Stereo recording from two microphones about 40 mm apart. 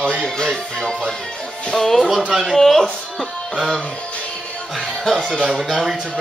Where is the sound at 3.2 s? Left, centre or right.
Left.